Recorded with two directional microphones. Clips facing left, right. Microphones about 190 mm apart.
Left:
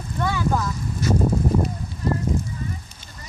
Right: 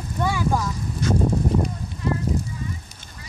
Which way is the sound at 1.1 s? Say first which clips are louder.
Left 1 dB; 10° left (ahead or behind).